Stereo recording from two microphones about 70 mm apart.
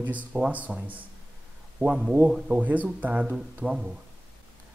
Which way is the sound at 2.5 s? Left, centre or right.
Right.